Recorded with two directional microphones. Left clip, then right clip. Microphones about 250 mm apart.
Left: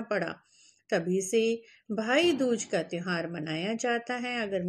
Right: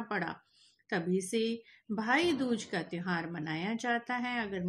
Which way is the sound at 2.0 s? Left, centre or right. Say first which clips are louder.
Left 4 dB; centre.